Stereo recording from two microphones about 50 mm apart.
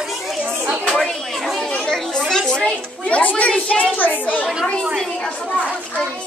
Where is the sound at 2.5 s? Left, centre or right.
Left.